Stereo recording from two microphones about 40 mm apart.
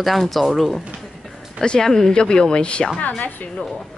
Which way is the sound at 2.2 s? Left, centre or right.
Left.